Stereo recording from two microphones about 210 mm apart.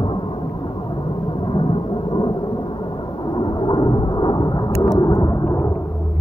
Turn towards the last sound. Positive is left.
turn(degrees=15)  # may be behind; listen again after turning